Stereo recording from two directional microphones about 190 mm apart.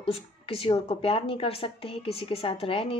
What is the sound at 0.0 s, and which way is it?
A woman's voice, 30° left (ahead or behind).